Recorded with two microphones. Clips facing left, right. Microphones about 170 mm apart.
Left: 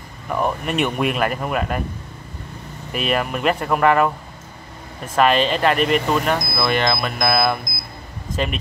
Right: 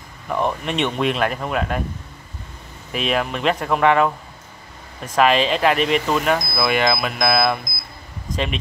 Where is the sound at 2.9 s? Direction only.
Centre (ahead or behind).